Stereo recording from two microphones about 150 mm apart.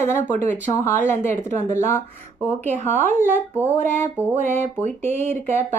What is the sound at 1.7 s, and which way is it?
Speech, 15° left (ahead or behind).